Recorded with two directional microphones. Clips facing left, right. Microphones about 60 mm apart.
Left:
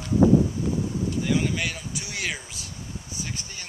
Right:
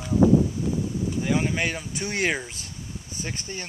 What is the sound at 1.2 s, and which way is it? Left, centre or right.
Speech, right.